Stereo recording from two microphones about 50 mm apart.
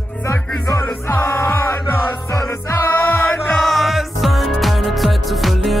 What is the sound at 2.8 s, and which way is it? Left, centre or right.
Music, left.